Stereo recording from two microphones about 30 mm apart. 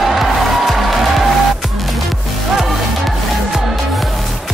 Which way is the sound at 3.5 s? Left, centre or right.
Centre.